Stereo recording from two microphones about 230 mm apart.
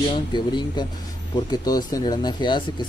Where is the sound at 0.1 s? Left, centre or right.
Centre.